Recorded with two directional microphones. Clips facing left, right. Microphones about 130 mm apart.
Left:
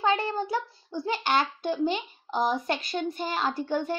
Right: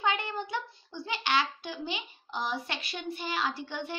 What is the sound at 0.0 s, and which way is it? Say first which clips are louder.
A child's voice: left 5 dB; 35° left (ahead or behind).